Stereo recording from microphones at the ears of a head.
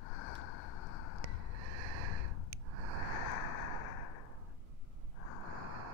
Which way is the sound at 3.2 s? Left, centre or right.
Left.